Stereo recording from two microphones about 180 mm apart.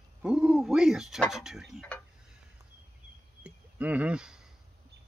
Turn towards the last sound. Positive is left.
turn(degrees=-5)  # may be behind; listen again after turning